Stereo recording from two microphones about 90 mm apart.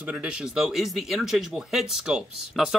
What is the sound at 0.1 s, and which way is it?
Speech, 10° right (ahead or behind).